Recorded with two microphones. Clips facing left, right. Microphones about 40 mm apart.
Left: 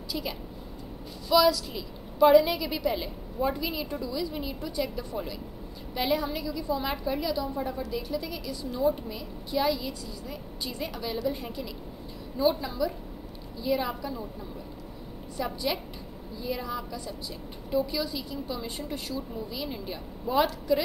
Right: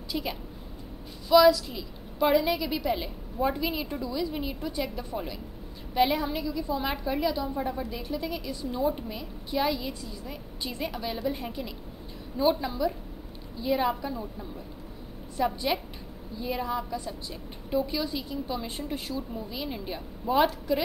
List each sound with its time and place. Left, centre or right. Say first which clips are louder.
0.1 s a woman's voice: right 2 dB; centre
15.3 s a woman's voice: right 3 dB; centre